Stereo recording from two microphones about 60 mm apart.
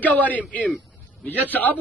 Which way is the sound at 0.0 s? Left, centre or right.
Left.